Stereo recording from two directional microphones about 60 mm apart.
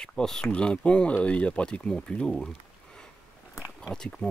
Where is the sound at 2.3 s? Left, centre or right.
Centre.